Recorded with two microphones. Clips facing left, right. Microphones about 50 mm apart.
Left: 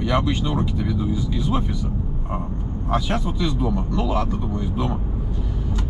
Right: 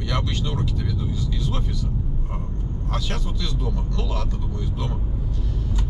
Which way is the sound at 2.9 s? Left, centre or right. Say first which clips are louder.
Left 8 dB; centre.